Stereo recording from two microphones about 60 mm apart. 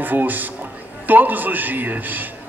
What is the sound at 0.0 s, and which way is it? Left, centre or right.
A man's voice, right.